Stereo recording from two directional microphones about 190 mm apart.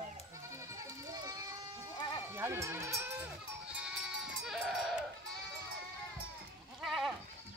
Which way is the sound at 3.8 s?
5° right (ahead or behind).